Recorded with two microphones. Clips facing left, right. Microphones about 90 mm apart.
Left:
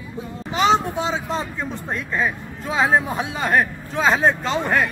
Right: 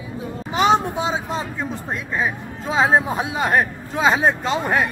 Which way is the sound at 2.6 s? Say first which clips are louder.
Right 2 dB; 25° right (ahead or behind).